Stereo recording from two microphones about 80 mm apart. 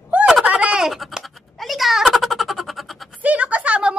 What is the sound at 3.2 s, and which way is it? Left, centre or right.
Speech, centre.